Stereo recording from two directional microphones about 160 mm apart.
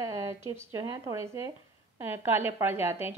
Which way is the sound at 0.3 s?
15° right (ahead or behind).